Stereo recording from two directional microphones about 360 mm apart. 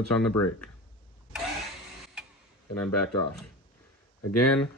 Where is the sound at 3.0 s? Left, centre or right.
Left.